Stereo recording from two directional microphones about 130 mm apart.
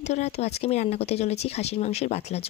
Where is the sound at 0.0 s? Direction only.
60° left (ahead or behind).